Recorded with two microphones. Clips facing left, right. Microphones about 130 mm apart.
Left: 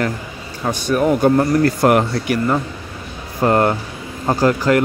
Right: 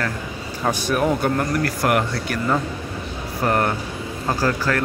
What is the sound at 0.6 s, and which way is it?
Speech, centre (ahead or behind).